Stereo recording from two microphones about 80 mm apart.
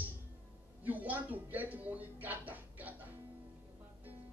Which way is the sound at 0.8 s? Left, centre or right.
Right.